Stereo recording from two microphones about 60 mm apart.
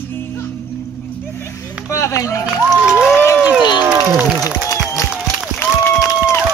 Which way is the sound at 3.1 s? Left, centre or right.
Left.